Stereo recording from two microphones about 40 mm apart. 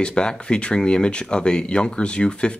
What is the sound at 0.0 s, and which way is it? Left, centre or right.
Speech, left.